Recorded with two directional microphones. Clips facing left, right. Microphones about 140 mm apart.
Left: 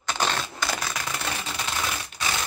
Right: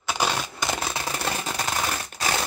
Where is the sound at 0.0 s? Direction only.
10° right (ahead or behind); by 1.1 s 25° right (ahead or behind).